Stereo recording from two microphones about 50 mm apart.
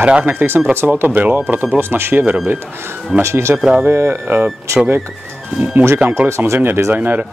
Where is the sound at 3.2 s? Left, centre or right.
Right.